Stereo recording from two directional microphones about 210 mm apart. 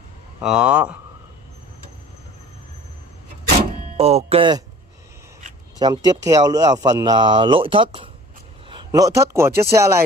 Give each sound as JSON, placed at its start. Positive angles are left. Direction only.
{"t": 0.4, "sound": "speech", "side_deg": -5}
{"t": 3.9, "sound": "speech", "side_deg": -30}
{"t": 5.8, "sound": "a man's voice", "side_deg": -20}